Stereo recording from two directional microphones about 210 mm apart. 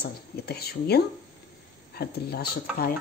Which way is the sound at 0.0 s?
50° left (ahead or behind).